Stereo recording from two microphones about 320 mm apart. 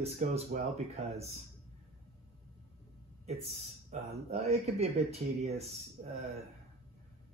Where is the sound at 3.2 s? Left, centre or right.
Right.